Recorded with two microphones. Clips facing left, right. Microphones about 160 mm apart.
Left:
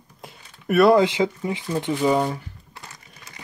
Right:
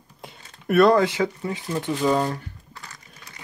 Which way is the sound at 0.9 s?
15° left (ahead or behind).